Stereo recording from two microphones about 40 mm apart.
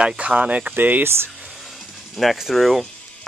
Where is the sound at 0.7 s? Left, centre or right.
Right.